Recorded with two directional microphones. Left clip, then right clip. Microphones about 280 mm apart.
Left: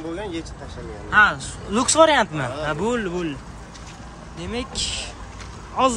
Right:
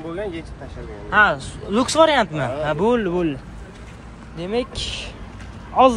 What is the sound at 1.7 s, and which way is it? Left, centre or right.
Speech, centre.